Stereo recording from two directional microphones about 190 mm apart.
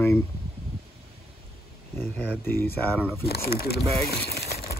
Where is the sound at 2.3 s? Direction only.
10° left (ahead or behind).